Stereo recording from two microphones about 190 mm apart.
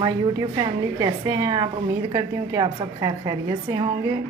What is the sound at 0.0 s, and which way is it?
A woman's voice, 20° right (ahead or behind).